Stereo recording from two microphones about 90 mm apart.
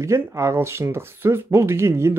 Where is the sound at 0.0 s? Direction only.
30° right (ahead or behind).